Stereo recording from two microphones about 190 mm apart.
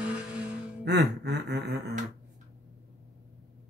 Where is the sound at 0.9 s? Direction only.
65° right (ahead or behind).